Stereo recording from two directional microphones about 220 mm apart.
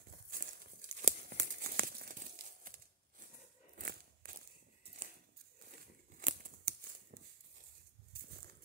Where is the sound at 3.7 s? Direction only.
40° right (ahead or behind).